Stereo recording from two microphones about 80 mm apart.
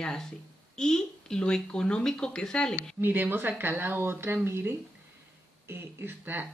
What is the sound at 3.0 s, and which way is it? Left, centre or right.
Speech, right.